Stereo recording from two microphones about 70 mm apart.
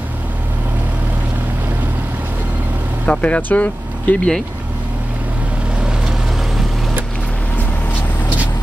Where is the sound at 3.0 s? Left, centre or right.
Centre.